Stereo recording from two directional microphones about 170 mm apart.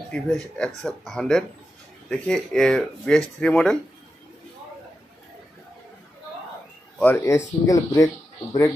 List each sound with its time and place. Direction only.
0.1 s speech: 5° left (ahead or behind)
7.0 s speech: 10° left (ahead or behind)